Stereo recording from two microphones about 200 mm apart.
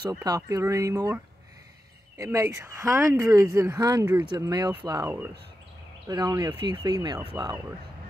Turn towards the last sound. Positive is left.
turn(degrees=-20)  # may be behind; listen again after turning